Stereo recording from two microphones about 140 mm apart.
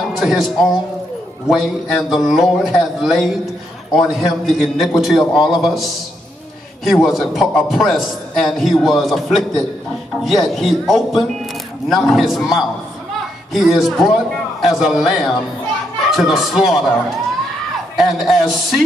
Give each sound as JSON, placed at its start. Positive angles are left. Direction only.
{"t": 0.2, "sound": "a man's voice", "side_deg": 0}
{"t": 17.9, "sound": "a man's voice", "side_deg": 0}